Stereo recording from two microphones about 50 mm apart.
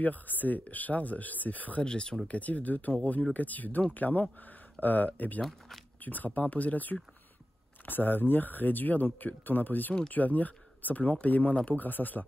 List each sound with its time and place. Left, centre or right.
0.0 s speech: left
1.9 s speech: centre
2.2 s speech: left